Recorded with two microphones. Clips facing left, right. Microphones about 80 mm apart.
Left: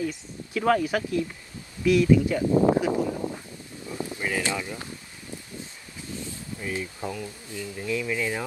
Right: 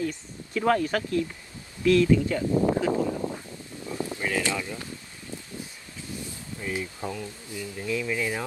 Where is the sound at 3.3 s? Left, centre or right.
Centre.